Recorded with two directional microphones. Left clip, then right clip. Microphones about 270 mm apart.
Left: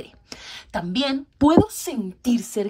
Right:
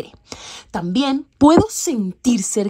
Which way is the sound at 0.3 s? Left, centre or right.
Centre.